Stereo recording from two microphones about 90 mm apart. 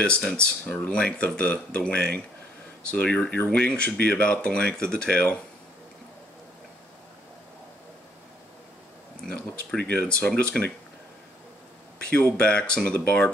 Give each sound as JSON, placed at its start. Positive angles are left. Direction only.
{"t": 0.2, "sound": "speech", "side_deg": 10}
{"t": 9.2, "sound": "speech", "side_deg": 10}
{"t": 12.1, "sound": "speech", "side_deg": 15}